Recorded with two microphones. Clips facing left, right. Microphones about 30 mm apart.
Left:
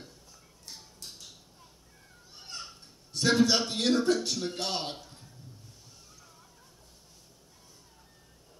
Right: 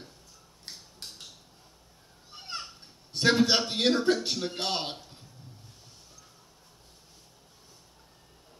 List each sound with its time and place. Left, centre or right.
0.7 s a sound: right
2.3 s children playing: right
2.6 s a man's voice: right